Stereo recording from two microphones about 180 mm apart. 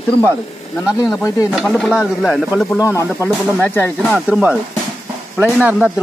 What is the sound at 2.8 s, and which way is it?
Speech, 20° left (ahead or behind).